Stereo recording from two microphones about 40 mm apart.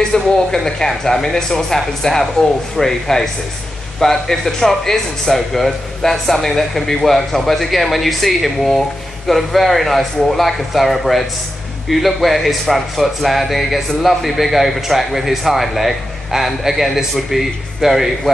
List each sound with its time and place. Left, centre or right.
0.1 s speech: left; by 18.3 s centre